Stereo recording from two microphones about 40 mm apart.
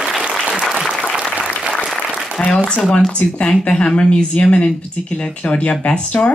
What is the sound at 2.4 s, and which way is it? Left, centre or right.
Speech, centre.